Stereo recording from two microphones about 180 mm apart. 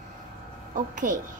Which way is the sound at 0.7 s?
45° right (ahead or behind).